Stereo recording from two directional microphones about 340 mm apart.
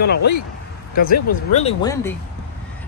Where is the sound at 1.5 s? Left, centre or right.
Centre.